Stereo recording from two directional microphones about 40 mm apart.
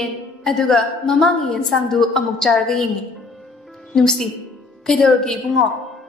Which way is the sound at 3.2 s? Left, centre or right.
Centre.